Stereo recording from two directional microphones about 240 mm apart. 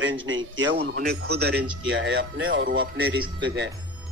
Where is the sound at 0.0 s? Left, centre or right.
Right.